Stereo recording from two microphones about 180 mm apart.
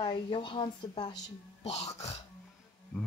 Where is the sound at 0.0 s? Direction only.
30° left (ahead or behind).